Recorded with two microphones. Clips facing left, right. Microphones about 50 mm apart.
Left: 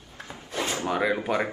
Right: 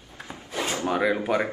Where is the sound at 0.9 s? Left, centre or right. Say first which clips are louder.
Right 2 dB; centre.